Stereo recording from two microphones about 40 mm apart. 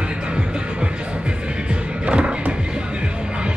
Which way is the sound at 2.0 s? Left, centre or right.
Right.